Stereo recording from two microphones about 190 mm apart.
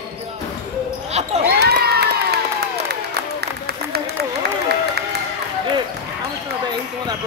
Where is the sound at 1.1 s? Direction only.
35° right (ahead or behind).